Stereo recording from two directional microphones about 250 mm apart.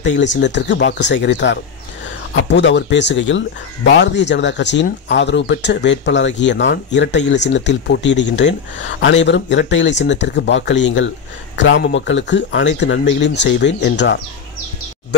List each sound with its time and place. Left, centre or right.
0.0 s speech: left